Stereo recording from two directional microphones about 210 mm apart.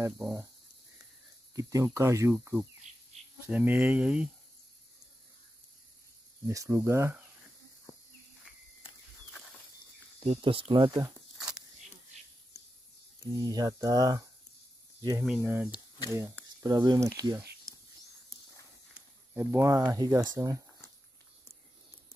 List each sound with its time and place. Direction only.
0.0 s speech: 15° right (ahead or behind)
1.5 s speech: 15° right (ahead or behind)
6.4 s speech: 15° right (ahead or behind)
10.2 s speech: 25° right (ahead or behind)
11.3 s walk: 5° right (ahead or behind)
13.3 s speech: 20° right (ahead or behind)
18.9 s speech: 10° right (ahead or behind)